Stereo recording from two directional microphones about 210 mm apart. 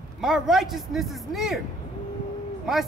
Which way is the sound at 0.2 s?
Centre (ahead or behind).